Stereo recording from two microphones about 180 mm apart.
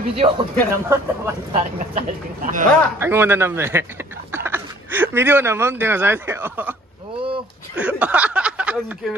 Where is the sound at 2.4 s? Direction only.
50° right (ahead or behind).